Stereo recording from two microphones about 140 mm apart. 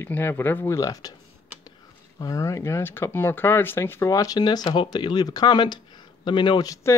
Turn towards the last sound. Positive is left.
turn(degrees=25)  # may be behind; listen again after turning